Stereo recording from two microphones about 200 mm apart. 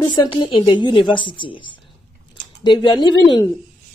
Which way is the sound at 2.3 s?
20° left (ahead or behind).